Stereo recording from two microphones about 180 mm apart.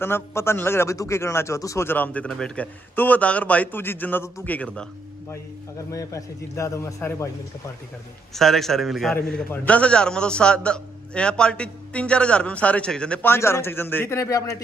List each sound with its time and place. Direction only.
0.0 s a man's voice: 15° left (ahead or behind)
5.9 s a man's voice: 20° left (ahead or behind)
8.4 s a man's voice: centre (ahead or behind); by 14.6 s 20° left (ahead or behind)